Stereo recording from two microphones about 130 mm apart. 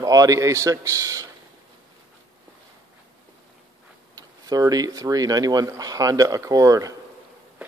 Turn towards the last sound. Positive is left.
turn(degrees=-25)  # may be behind; listen again after turning